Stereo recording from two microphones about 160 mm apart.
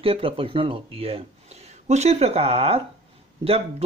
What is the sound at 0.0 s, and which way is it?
Speech, 35° right (ahead or behind).